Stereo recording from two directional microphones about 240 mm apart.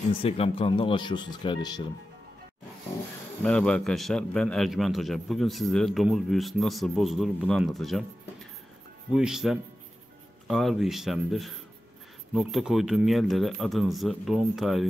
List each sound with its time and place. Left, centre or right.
0.1 s speech: left
3.4 s a man's voice: centre
9.1 s a man's voice: centre